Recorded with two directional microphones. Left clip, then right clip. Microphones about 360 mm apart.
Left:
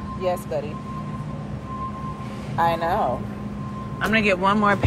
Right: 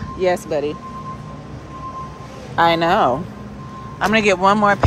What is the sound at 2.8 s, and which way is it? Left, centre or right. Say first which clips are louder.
Speech: right 7 dB; right.